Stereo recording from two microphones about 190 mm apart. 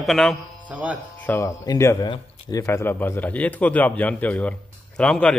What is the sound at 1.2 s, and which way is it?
Speech, 10° left (ahead or behind).